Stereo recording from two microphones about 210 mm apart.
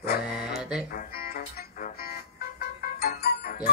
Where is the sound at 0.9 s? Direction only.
45° left (ahead or behind).